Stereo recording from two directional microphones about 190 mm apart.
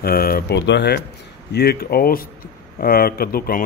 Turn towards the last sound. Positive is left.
turn(degrees=50)  # may be behind; listen again after turning